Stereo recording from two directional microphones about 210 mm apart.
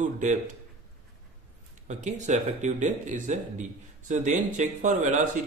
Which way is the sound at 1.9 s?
35° right (ahead or behind).